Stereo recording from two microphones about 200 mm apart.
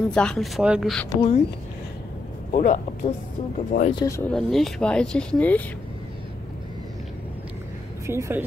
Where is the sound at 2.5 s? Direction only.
35° left (ahead or behind).